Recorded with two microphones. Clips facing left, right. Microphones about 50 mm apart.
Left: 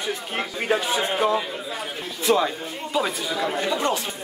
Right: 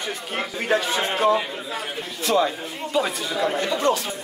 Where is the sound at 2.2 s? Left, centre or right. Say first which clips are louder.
Even; centre.